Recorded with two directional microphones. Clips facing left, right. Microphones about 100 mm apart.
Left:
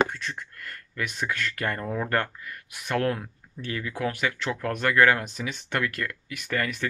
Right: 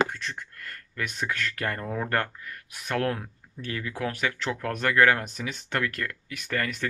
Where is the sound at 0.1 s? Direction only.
40° right (ahead or behind).